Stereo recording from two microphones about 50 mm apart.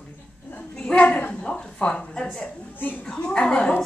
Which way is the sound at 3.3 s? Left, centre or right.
Left.